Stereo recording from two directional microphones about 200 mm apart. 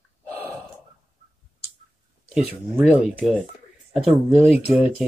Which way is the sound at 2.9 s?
5° right (ahead or behind).